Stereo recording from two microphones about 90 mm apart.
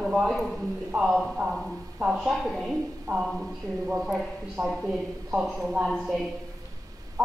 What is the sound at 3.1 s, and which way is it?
Speech, 35° right (ahead or behind).